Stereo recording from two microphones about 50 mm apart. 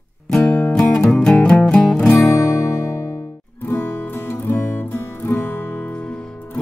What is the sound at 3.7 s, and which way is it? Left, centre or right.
Music, left.